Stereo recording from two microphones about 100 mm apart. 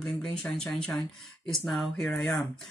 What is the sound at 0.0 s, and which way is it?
Speech, 5° left (ahead or behind).